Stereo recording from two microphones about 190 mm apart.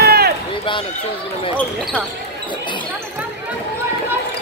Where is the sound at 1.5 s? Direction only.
Centre (ahead or behind).